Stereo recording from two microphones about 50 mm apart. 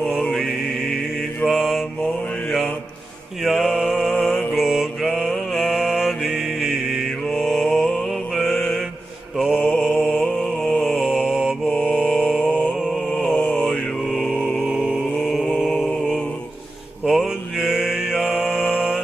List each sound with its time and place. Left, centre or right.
0.2 s mantra: centre
3.4 s mantra: centre
14.7 s chant: centre
15.6 s mantra: centre
17.6 s mantra: centre